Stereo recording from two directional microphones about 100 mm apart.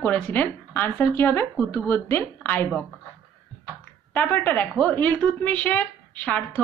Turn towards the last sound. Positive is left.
turn(degrees=15)  # may be behind; listen again after turning